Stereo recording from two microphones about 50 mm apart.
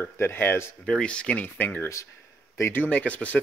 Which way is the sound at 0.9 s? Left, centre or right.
Centre.